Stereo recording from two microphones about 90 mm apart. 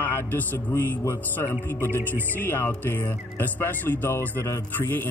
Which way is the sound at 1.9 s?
30° right (ahead or behind).